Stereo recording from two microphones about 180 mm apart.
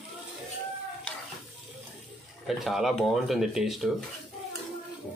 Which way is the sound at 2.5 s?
Centre (ahead or behind).